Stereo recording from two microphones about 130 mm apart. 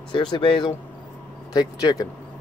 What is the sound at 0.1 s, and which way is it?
Speech, 35° left (ahead or behind).